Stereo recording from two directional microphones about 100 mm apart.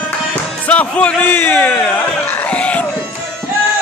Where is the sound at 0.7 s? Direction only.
15° left (ahead or behind).